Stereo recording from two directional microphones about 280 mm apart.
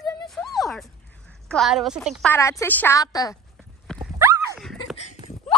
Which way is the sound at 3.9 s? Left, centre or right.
Centre.